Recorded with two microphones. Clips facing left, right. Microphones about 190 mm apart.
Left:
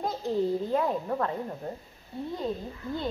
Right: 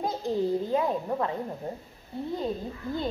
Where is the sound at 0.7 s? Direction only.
10° right (ahead or behind).